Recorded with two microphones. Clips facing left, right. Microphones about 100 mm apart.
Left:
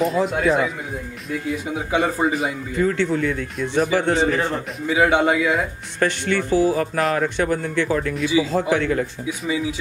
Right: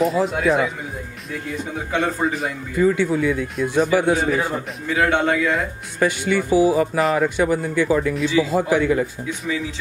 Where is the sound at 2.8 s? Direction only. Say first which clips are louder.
Right 3 dB; 10° right (ahead or behind).